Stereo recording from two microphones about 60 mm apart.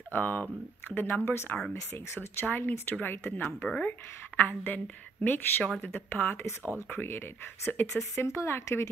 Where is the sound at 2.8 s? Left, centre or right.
Left.